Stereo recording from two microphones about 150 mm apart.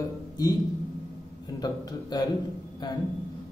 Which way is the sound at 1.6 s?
25° left (ahead or behind).